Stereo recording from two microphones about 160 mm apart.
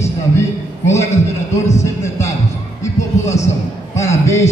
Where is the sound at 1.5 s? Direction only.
20° left (ahead or behind).